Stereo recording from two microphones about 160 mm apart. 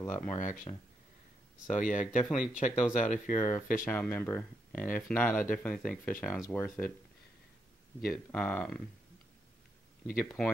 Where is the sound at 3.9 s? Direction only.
5° left (ahead or behind).